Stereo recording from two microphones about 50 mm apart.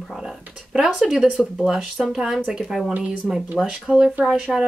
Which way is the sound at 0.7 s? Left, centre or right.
Centre.